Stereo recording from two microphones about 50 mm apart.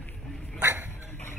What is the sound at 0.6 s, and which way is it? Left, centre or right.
Dog, right.